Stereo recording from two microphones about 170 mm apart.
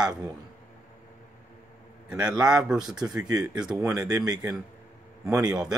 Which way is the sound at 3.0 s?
20° right (ahead or behind).